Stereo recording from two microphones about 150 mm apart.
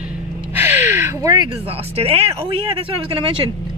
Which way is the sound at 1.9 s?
45° right (ahead or behind).